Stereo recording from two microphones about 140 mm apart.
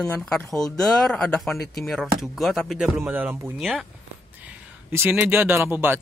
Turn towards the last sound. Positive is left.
turn(degrees=-15)  # may be behind; listen again after turning